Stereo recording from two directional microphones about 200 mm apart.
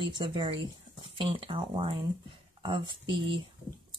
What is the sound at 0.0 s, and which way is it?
Speech, 25° right (ahead or behind).